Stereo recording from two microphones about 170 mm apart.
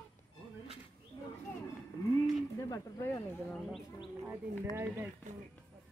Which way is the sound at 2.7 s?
20° left (ahead or behind).